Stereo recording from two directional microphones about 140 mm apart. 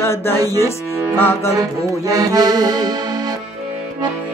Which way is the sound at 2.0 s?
25° right (ahead or behind).